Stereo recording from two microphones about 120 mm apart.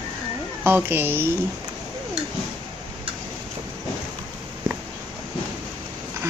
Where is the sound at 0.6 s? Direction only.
15° right (ahead or behind).